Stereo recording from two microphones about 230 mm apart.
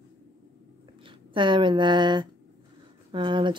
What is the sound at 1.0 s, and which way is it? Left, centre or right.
Speech, right.